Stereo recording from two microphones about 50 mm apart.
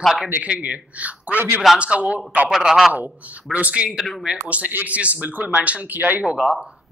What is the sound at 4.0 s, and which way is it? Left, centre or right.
Speech, centre.